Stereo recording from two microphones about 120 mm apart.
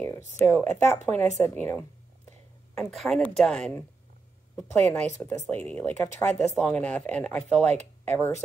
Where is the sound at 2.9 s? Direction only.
5° left (ahead or behind).